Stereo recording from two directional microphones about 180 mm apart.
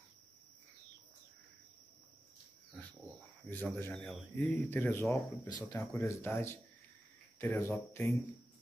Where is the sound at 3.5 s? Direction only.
10° left (ahead or behind).